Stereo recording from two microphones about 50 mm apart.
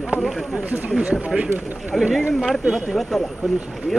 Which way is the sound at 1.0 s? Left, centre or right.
Right.